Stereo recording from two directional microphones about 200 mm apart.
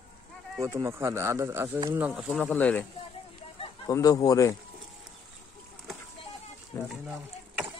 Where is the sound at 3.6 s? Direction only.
20° left (ahead or behind).